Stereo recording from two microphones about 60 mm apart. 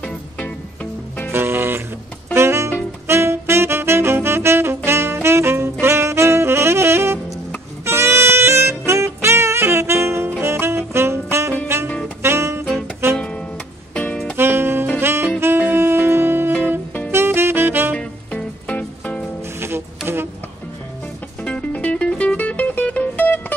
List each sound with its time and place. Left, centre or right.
1.3 s music: right
3.1 s saxophone: right
12.2 s music: right
13.2 s music: centre
14.3 s music: right
15.0 s saxophone: right
15.7 s music: right
17.1 s saxophone: right
17.9 s music: centre
21.4 s music: left